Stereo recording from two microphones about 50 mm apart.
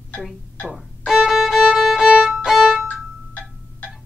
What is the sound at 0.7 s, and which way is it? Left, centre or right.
Violin, centre.